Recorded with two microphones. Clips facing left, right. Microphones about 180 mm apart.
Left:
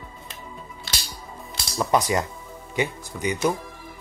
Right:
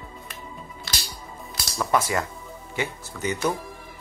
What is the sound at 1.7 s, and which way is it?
Speech, 20° left (ahead or behind).